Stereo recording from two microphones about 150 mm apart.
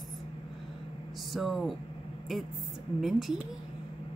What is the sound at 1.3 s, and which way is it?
Speech, centre (ahead or behind).